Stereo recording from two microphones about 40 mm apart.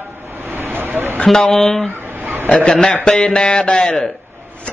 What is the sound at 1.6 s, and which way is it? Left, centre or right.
Speech, centre.